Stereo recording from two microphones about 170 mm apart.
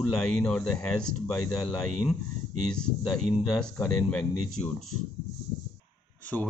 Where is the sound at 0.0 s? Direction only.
5° left (ahead or behind).